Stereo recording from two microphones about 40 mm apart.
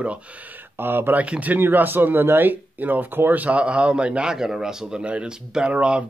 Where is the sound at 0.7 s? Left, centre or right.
Right.